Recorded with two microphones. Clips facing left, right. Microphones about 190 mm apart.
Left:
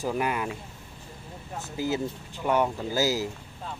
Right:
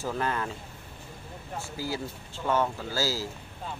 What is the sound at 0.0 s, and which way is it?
Speech, 15° left (ahead or behind).